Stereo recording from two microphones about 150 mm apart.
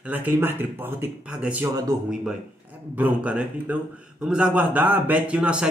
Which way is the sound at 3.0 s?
10° right (ahead or behind).